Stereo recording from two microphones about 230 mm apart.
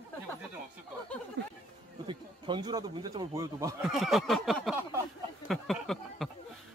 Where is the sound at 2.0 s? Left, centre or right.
Right.